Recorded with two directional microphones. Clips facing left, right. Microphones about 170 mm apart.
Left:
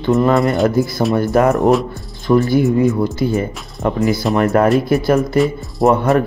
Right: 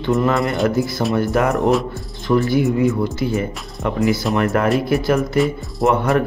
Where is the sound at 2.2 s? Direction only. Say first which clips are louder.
Left 3 dB; 40° left (ahead or behind).